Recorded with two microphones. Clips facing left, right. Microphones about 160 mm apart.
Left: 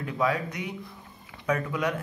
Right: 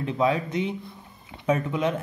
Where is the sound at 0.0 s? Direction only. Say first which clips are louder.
Right 3 dB; 25° right (ahead or behind).